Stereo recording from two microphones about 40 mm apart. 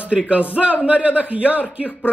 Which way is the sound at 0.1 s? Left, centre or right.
Centre.